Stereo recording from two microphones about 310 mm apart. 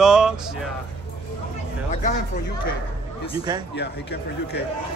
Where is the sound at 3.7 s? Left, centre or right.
Left.